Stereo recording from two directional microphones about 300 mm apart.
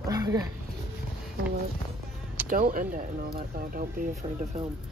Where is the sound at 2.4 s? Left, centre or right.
Right.